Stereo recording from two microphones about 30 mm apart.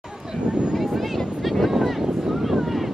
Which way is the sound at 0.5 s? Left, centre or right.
Right.